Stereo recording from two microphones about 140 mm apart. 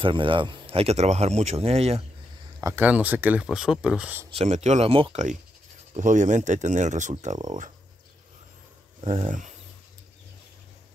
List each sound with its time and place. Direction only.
0.0 s speech: 35° right (ahead or behind)
2.6 s speech: 15° right (ahead or behind)
4.3 s speech: 50° right (ahead or behind)
5.9 s speech: 60° right (ahead or behind)
9.0 s speech: 55° right (ahead or behind)